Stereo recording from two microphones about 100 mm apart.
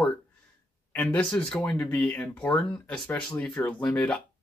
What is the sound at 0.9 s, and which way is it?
Speech, 15° left (ahead or behind).